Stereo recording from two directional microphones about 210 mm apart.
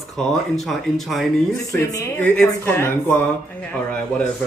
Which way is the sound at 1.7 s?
15° left (ahead or behind).